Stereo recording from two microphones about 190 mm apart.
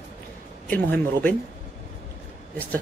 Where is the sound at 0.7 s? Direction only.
10° left (ahead or behind).